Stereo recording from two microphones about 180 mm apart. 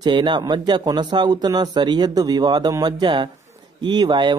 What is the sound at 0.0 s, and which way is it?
A man's voice, 25° right (ahead or behind).